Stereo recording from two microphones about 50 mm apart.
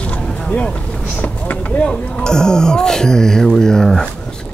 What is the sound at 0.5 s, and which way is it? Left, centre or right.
Speech, left.